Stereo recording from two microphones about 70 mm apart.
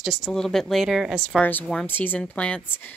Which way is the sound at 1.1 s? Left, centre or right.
Centre.